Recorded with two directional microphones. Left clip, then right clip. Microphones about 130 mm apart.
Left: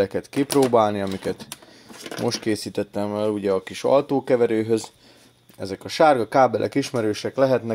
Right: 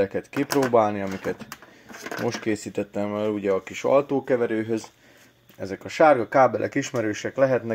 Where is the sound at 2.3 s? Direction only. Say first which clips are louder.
Left 3 dB; 50° left (ahead or behind).